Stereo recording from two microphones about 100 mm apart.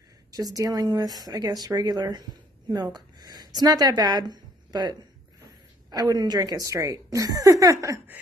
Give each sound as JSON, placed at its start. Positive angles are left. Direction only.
{"t": 0.4, "sound": "a woman's voice", "side_deg": -40}